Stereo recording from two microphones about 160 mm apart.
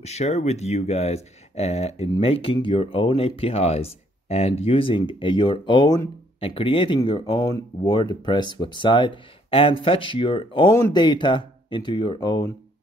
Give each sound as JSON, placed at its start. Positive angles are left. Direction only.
{"t": 0.0, "sound": "speech", "side_deg": 40}